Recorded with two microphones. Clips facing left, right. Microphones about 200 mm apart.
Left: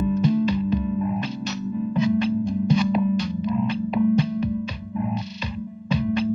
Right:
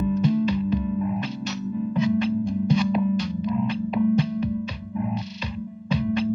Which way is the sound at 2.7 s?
50° left (ahead or behind).